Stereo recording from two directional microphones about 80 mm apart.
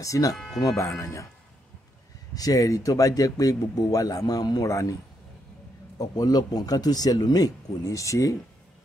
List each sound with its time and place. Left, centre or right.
0.0 s speech: left
2.3 s speech: left
5.9 s speech: left